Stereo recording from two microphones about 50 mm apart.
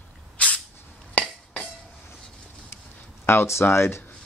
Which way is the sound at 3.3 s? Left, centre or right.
Left.